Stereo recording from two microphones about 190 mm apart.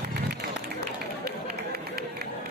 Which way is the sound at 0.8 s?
55° right (ahead or behind).